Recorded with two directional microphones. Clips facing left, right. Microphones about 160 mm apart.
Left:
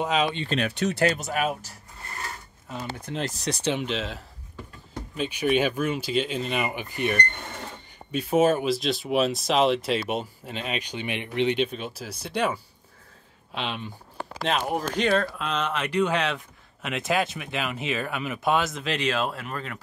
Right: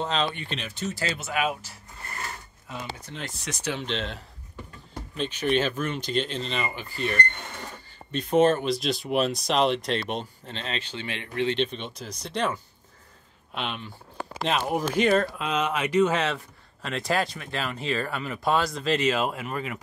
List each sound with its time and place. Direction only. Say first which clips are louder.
0.0 s speech: left 3 dB; 10° left (ahead or behind)
0.7 s speech: left 6 dB; 70° left (ahead or behind)
1.1 s speech: left 1 dB; 40° left (ahead or behind)
3.1 s speech: left 7 dB; 40° left (ahead or behind)
3.8 s speech: left 1 dB; 5° left (ahead or behind)
14.4 s speech: even; centre (ahead or behind)